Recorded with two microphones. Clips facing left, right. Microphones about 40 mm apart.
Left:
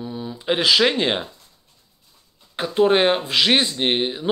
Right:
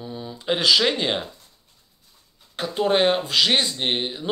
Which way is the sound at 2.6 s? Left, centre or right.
Centre.